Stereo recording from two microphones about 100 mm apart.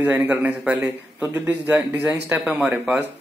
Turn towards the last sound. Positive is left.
turn(degrees=-15)  # may be behind; listen again after turning